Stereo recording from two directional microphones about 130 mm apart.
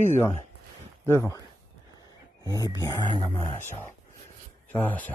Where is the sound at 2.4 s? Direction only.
30° right (ahead or behind).